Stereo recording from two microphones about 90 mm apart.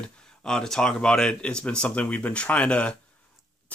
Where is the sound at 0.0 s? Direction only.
10° left (ahead or behind).